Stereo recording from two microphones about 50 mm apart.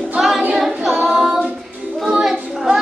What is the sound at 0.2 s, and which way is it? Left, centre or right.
A capella, centre.